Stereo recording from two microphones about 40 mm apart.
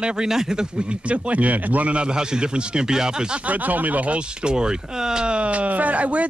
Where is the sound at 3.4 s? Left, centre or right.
Right; by 5.4 s centre.